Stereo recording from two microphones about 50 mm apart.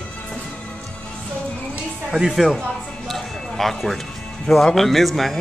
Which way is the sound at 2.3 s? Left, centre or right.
Centre.